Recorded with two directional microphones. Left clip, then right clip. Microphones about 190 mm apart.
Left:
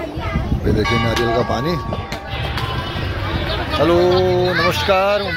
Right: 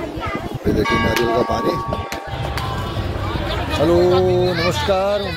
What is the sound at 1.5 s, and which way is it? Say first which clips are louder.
Speech: right 1 dB; 10° right (ahead or behind).